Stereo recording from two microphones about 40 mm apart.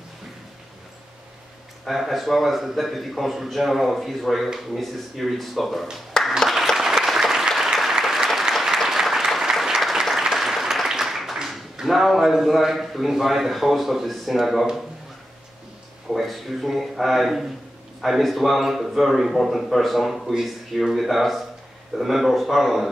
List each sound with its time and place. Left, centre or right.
1.9 s a man's voice: centre
6.2 s applause: centre
6.5 s applause: centre
11.8 s a man's voice: centre
16.1 s a man's voice: centre